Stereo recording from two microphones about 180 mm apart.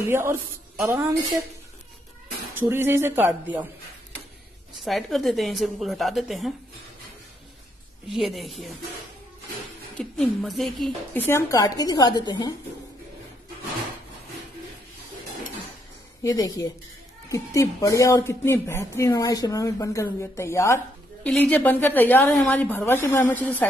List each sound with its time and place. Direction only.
0.0 s speech: 15° right (ahead or behind)
2.5 s speech: 15° right (ahead or behind)
4.7 s a woman's voice: centre (ahead or behind)
8.1 s a woman's voice: centre (ahead or behind)
9.9 s a woman's voice: centre (ahead or behind)
11.2 s a woman's voice: 15° left (ahead or behind)
16.2 s a woman's voice: 20° left (ahead or behind)